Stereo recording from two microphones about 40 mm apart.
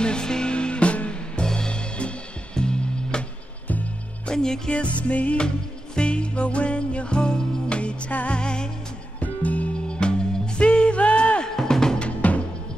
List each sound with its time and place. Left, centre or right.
0.0 s music: centre
4.3 s music: centre
4.7 s music: left
9.2 s music: left
9.9 s music: left
11.4 s drum: centre
12.2 s music: left